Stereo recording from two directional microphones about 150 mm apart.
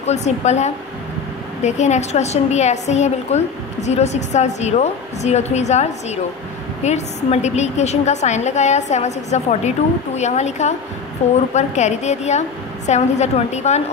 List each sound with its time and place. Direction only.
0.0 s a woman's voice: 50° left (ahead or behind)